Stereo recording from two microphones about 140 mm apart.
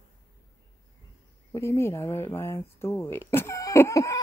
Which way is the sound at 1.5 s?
20° left (ahead or behind).